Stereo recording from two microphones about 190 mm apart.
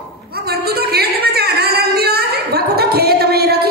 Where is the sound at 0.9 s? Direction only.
55° right (ahead or behind).